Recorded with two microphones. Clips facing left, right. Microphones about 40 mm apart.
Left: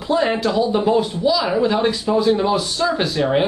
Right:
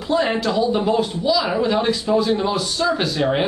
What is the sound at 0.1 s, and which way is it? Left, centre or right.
Speech, centre.